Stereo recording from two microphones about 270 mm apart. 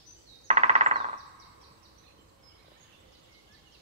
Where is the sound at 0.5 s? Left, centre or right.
Right.